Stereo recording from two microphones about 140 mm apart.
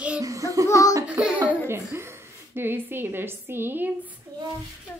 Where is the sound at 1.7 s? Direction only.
20° right (ahead or behind).